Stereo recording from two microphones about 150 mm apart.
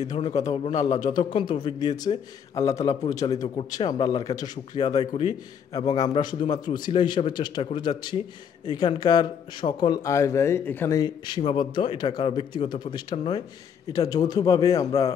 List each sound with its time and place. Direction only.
0.5 s a man's voice: 50° left (ahead or behind)
0.8 s speech: 25° left (ahead or behind)
11.0 s a man's voice: 30° left (ahead or behind)